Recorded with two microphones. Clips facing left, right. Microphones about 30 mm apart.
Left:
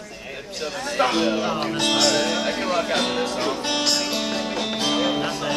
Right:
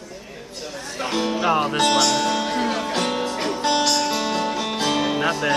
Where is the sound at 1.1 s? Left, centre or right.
Left.